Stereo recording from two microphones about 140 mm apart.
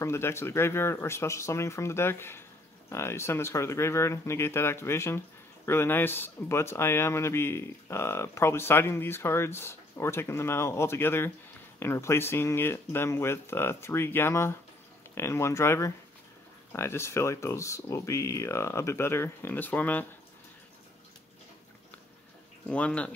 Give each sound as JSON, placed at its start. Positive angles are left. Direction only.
{"t": 0.0, "sound": "speech", "side_deg": 20}
{"t": 22.7, "sound": "speech", "side_deg": 10}